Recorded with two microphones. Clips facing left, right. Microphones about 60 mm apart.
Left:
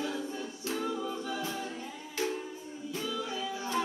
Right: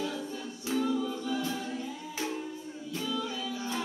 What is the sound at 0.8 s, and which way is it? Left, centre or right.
Music, centre.